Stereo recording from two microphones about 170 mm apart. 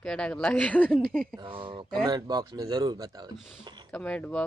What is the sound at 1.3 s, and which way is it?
Speech, 30° right (ahead or behind).